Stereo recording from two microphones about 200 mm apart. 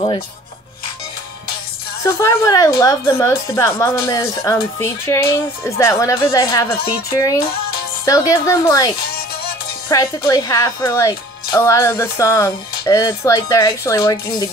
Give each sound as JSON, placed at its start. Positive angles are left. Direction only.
{"t": 2.0, "sound": "speech", "side_deg": 15}
{"t": 8.0, "sound": "speech", "side_deg": 15}